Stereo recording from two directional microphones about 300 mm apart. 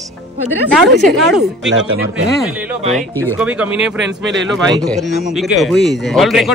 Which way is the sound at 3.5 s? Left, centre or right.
Centre.